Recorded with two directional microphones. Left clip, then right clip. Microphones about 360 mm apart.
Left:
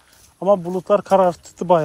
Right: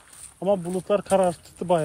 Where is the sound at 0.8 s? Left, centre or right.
Left.